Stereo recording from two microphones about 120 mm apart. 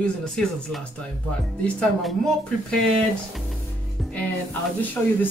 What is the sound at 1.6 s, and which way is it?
Speech, 5° left (ahead or behind).